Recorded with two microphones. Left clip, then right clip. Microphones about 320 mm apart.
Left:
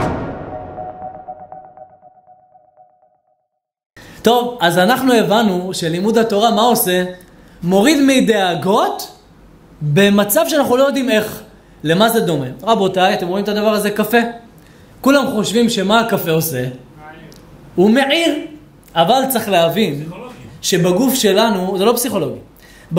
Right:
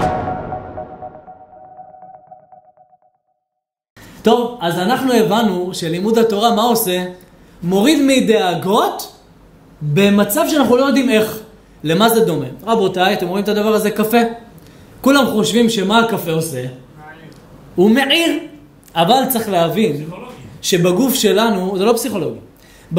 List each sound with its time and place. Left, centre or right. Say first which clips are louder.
4.2 s a man's voice: left 1 dB; centre
17.7 s a man's voice: even; centre